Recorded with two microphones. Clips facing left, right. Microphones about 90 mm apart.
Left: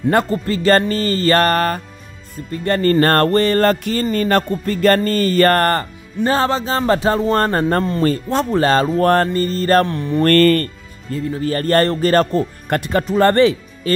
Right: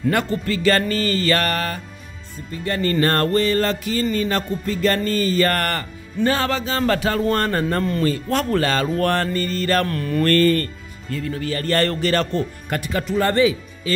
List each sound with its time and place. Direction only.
0.1 s music: 35° left (ahead or behind); by 5.6 s 50° left (ahead or behind)
5.6 s music: 35° left (ahead or behind)
8.3 s speech: 25° left (ahead or behind)
8.6 s music: 30° left (ahead or behind)
9.8 s speech: 25° left (ahead or behind)
11.5 s music: 45° left (ahead or behind)
12.6 s speech: 55° left (ahead or behind)